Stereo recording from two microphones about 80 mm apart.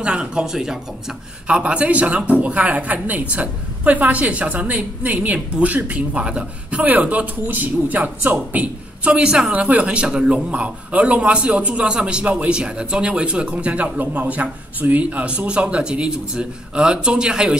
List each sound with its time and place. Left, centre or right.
0.0 s a man's voice: centre